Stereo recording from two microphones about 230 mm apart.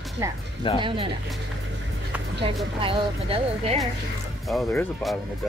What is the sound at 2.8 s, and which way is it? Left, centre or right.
Speech, right.